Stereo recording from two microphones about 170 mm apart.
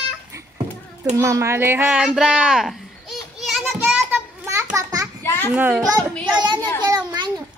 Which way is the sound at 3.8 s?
15° right (ahead or behind).